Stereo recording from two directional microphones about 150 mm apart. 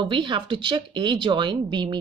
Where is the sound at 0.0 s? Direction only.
30° right (ahead or behind).